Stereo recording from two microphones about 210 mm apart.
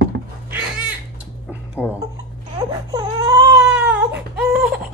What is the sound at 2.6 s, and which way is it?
Baby cry, 20° right (ahead or behind).